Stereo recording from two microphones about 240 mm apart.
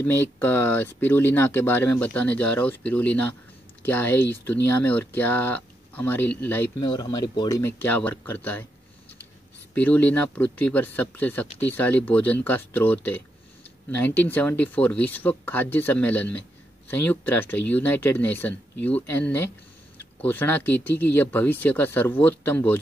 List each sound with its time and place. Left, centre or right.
0.0 s speech: centre
9.8 s speech: centre